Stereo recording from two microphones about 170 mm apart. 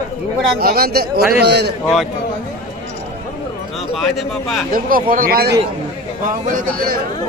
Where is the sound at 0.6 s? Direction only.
60° right (ahead or behind); by 1.7 s 75° right (ahead or behind).